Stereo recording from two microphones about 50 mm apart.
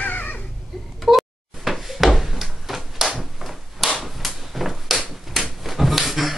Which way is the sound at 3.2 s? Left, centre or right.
Centre.